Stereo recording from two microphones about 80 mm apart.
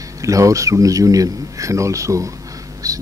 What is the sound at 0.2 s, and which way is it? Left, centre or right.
Speech, right.